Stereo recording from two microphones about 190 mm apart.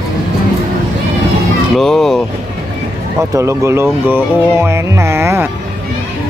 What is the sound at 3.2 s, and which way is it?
Speech, 15° right (ahead or behind).